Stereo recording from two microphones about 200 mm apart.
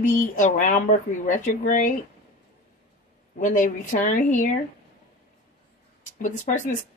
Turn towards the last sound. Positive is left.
turn(degrees=40)  # may be behind; listen again after turning